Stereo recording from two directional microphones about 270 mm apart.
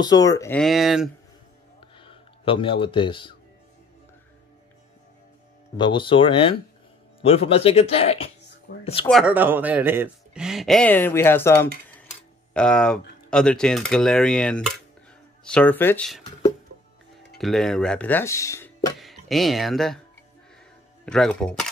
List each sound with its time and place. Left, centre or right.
0.0 s speech: centre
2.0 s speech: centre
5.8 s speech: centre
9.0 s speech: centre
17.4 s speech: centre
18.9 s speech: centre
21.0 s speech: centre